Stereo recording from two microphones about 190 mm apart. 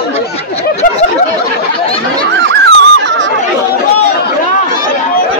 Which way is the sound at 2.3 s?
75° right (ahead or behind).